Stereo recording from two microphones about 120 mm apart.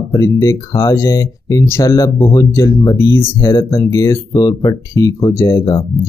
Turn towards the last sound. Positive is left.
turn(degrees=25)  # may be behind; listen again after turning